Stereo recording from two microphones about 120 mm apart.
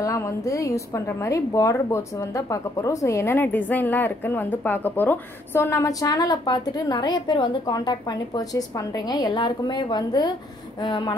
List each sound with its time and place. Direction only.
0.0 s a woman's voice: 25° left (ahead or behind)